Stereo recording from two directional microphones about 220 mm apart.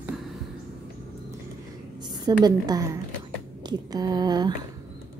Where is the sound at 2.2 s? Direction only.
15° right (ahead or behind).